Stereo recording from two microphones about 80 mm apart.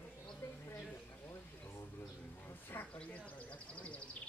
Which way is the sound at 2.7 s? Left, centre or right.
Left.